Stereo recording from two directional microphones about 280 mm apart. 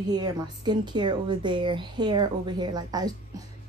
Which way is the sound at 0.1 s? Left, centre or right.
Centre.